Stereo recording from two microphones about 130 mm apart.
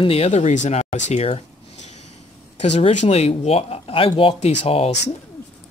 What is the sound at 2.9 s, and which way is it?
Speech, 60° left (ahead or behind).